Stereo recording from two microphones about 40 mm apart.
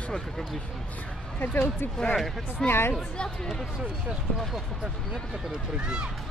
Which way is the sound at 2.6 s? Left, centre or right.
Left.